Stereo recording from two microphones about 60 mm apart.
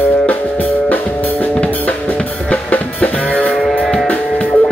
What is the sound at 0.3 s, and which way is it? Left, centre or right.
Music, left.